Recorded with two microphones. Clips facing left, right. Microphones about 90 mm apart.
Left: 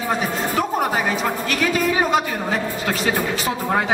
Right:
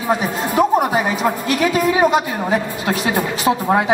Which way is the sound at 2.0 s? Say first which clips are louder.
Right 4 dB; 15° right (ahead or behind).